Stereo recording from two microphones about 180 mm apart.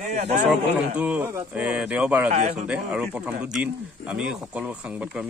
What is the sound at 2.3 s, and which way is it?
Speech, 40° right (ahead or behind).